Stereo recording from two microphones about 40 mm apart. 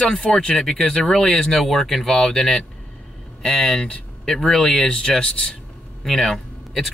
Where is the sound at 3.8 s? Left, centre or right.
Left.